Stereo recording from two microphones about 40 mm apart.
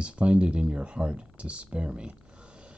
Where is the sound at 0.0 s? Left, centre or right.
Right.